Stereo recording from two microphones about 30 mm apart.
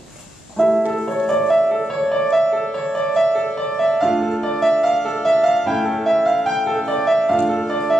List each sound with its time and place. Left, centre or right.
1.3 s music: centre